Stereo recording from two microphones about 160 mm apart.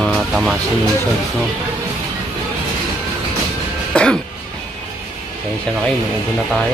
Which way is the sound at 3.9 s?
5° left (ahead or behind).